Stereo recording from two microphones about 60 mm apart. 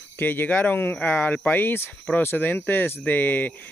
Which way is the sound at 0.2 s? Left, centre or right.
Left.